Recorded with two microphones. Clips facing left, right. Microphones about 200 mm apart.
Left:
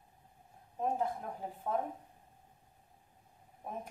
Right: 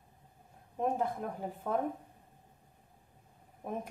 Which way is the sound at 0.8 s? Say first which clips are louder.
Right 2 dB; 70° right (ahead or behind).